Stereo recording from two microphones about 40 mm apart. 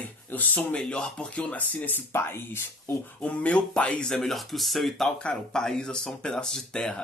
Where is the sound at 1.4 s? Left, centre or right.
Left.